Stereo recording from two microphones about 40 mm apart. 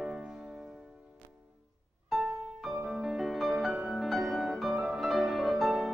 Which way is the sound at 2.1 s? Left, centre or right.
Centre.